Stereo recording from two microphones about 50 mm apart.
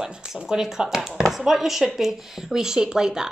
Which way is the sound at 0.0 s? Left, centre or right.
Centre.